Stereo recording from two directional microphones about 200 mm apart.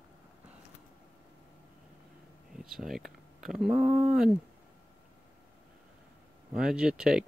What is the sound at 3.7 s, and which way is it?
Speech, 35° right (ahead or behind).